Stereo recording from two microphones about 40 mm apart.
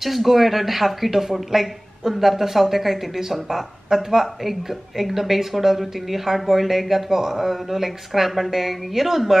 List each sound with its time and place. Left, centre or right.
0.0 s speech: centre